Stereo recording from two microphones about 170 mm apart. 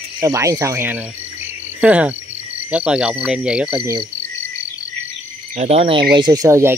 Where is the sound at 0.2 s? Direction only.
15° right (ahead or behind).